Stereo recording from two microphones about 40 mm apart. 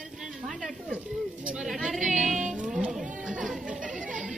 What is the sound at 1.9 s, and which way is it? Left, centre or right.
Female singing, centre.